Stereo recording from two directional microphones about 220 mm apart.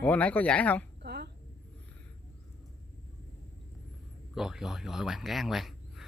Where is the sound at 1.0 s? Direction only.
45° right (ahead or behind).